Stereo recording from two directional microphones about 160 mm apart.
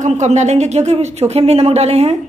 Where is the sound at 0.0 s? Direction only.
45° right (ahead or behind).